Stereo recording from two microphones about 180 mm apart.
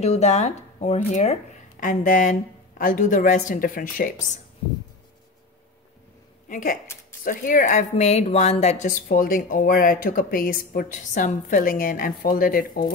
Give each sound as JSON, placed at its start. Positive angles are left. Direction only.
{"t": 0.0, "sound": "a woman's voice", "side_deg": 35}
{"t": 6.5, "sound": "a woman's voice", "side_deg": 50}